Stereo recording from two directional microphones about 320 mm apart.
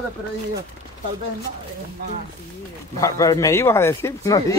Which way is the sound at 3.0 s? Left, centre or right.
Centre.